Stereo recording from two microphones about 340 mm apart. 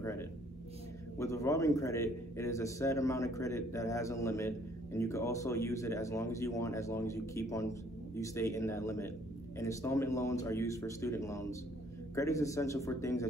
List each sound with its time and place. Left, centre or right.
0.0 s a man's voice: centre